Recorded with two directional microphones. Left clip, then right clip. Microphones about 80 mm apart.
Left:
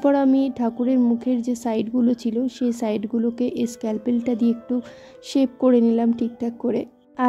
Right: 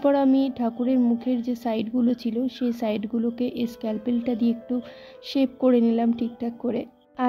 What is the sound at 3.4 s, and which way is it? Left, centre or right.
A woman's voice, left.